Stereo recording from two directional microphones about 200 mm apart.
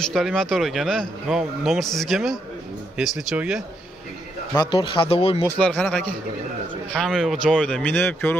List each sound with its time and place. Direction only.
0.0 s speech: centre (ahead or behind)
4.6 s speech: 25° left (ahead or behind)
5.6 s a man's voice: 5° left (ahead or behind)